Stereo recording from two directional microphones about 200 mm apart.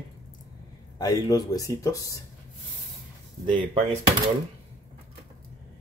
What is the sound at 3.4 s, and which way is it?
Speech, 25° right (ahead or behind).